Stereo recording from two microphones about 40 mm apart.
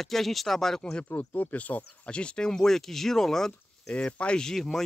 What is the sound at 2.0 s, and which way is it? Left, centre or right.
Speech, left.